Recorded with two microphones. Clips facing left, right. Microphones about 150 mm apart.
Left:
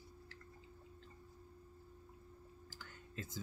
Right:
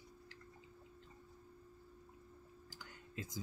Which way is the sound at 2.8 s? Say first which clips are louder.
Right 1 dB; 15° right (ahead or behind).